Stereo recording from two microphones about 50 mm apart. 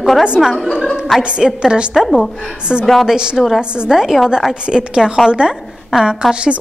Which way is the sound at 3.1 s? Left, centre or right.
Centre.